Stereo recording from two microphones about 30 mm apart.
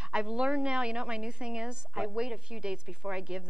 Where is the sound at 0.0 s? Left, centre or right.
Right.